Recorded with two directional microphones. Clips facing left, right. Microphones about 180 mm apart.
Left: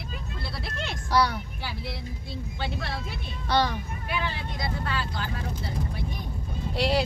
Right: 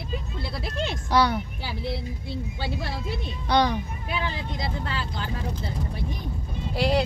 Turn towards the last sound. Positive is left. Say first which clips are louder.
# right 2 dB
turn(degrees=0)  # may be behind; listen again after turning